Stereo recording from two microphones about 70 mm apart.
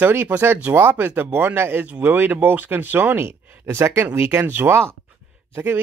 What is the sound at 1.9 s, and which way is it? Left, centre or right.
Speech, right.